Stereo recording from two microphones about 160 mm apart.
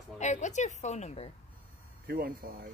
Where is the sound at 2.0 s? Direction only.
70° right (ahead or behind).